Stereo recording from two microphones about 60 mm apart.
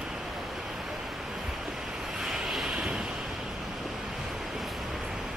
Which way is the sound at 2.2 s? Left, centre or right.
Centre.